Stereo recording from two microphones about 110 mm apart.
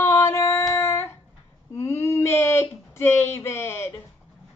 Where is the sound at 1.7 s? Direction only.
25° left (ahead or behind).